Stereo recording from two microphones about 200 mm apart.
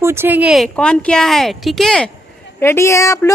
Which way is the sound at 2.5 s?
15° left (ahead or behind).